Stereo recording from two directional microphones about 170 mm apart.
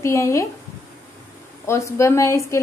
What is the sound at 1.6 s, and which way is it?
Speech, 15° left (ahead or behind).